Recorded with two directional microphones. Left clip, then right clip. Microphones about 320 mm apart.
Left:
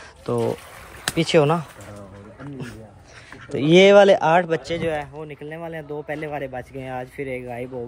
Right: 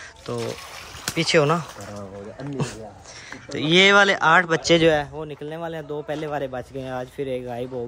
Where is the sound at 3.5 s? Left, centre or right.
Centre.